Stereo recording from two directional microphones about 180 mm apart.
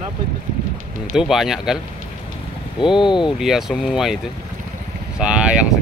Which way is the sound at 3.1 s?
25° left (ahead or behind).